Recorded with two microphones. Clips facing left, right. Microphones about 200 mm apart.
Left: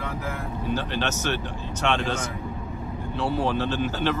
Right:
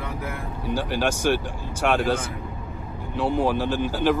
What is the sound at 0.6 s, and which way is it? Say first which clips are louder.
Speech: right 3 dB; 10° right (ahead or behind).